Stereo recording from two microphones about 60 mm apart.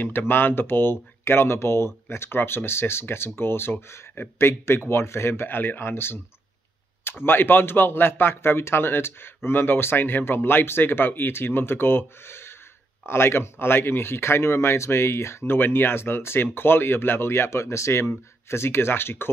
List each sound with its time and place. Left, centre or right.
0.0 s speech: left
4.1 s speech: left
4.5 s speech: left